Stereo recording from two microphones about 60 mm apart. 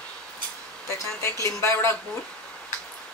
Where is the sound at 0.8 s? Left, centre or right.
Left.